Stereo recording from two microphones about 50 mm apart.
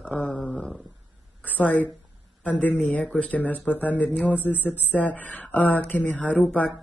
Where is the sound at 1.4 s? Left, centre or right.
Left.